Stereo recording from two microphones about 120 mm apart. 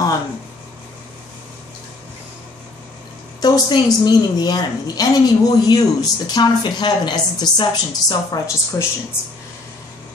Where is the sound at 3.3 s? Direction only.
35° left (ahead or behind).